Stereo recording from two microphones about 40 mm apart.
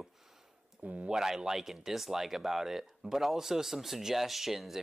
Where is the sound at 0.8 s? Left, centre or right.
Right.